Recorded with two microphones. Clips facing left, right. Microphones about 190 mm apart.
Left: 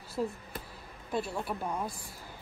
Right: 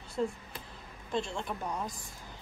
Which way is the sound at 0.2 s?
5° left (ahead or behind).